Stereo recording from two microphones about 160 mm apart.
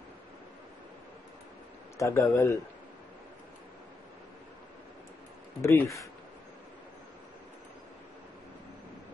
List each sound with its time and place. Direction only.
2.0 s speech: 20° left (ahead or behind)
5.6 s speech: 15° left (ahead or behind)